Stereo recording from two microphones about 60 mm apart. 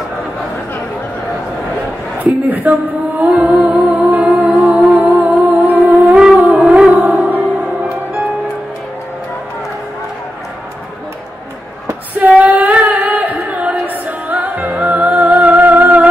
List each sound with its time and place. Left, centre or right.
2.1 s speech: right
3.3 s music: right
4.5 s music: centre
6.1 s music: centre
6.4 s music: right
12.4 s female singing: right
12.7 s music: right